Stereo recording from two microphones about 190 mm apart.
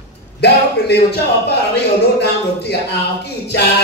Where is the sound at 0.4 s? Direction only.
60° left (ahead or behind).